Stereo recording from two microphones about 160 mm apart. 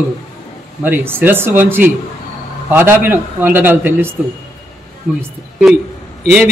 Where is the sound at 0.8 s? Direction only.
15° right (ahead or behind).